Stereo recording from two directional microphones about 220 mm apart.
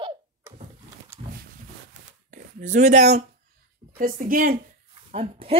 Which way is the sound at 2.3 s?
35° right (ahead or behind).